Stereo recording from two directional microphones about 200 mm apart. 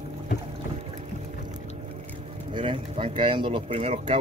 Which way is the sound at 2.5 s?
25° right (ahead or behind).